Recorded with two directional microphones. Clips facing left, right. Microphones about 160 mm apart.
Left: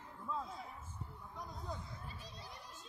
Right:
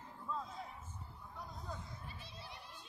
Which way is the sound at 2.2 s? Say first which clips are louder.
Even; 40° left (ahead or behind).